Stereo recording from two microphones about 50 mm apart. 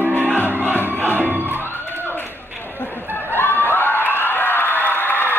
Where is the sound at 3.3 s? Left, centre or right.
Left.